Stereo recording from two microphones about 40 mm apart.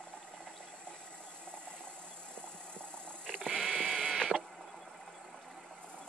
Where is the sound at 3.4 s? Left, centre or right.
Centre.